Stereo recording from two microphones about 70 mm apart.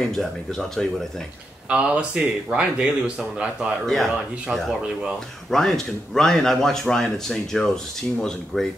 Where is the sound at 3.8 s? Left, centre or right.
Centre.